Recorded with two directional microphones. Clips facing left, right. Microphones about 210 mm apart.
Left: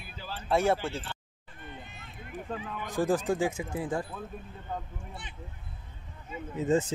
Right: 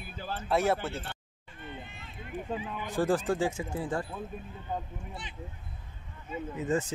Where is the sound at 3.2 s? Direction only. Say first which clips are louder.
Left 1 dB; 10° left (ahead or behind).